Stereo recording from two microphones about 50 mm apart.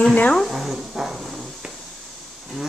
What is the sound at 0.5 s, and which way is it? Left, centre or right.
Dog, centre.